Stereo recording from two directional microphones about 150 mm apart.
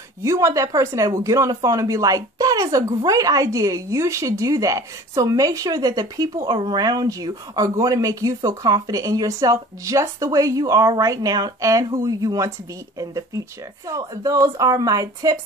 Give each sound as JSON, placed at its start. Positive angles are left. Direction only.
{"t": 0.2, "sound": "speech", "side_deg": -20}
{"t": 13.8, "sound": "speech", "side_deg": -20}